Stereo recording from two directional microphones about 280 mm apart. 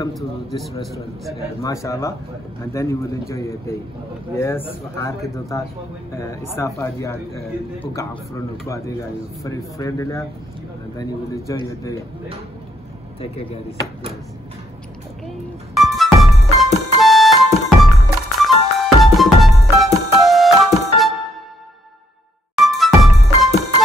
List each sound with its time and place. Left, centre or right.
1.6 s speech: centre
13.2 s speech: centre
15.2 s music: centre
22.6 s music: centre